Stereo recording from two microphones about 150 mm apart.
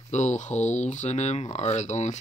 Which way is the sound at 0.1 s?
50° left (ahead or behind).